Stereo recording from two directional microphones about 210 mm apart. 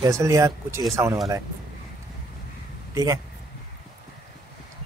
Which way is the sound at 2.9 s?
15° right (ahead or behind).